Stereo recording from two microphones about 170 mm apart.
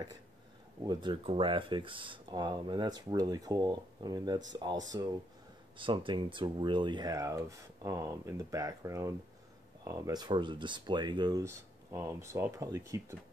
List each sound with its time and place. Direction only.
0.8 s speech: 30° right (ahead or behind)
5.8 s speech: 30° right (ahead or behind)